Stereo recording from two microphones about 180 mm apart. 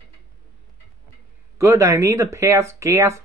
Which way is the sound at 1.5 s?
15° right (ahead or behind).